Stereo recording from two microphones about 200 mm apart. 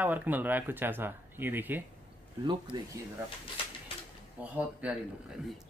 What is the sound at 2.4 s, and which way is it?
Speech, 25° right (ahead or behind).